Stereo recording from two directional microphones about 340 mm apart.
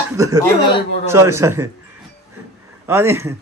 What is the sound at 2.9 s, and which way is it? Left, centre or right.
Speech, centre.